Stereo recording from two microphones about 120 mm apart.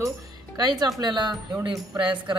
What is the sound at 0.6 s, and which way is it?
Speech, 35° right (ahead or behind).